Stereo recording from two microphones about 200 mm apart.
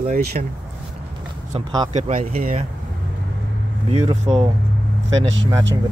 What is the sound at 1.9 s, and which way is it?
Speech, 40° right (ahead or behind).